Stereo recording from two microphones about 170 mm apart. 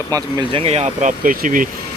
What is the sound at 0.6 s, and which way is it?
Speech, 40° right (ahead or behind).